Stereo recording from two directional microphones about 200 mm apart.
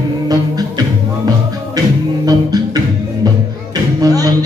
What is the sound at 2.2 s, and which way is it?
Music, 20° right (ahead or behind).